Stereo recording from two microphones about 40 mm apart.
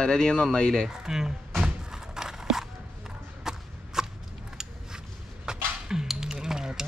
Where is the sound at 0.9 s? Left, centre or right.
Centre.